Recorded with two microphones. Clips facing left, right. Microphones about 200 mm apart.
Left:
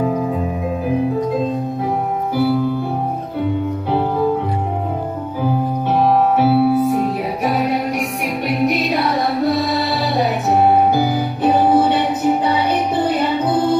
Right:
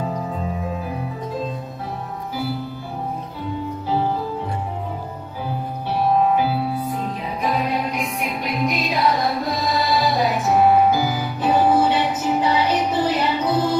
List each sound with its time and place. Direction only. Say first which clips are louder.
3.9 s music: left 4 dB; 60° left (ahead or behind)
5.4 s music: left 9 dB; 50° left (ahead or behind)
6.0 s music: left 3 dB; 80° left; by 13.7 s 55° left (ahead or behind)